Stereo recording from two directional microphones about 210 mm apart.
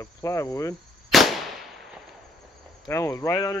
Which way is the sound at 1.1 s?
Centre (ahead or behind).